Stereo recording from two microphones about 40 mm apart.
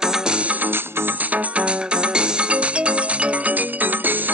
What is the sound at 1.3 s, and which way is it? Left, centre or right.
Music, right.